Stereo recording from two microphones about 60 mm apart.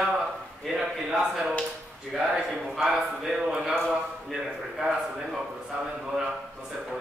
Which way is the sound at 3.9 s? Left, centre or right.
Centre.